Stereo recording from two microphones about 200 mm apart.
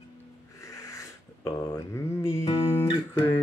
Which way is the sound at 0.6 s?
15° left (ahead or behind).